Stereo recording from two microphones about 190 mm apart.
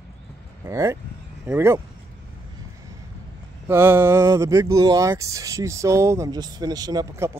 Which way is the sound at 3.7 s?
10° right (ahead or behind).